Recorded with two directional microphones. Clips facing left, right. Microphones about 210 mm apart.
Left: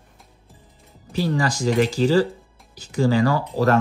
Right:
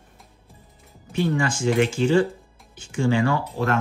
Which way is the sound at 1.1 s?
35° left (ahead or behind).